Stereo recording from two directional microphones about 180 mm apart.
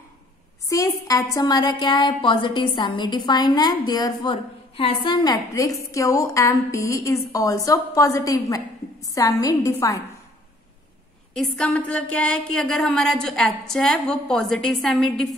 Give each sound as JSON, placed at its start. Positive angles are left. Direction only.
{"t": 0.7, "sound": "a woman's voice", "side_deg": 20}
{"t": 11.3, "sound": "a woman's voice", "side_deg": 5}